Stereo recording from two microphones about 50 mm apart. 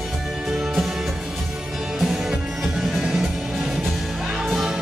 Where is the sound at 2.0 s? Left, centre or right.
Centre.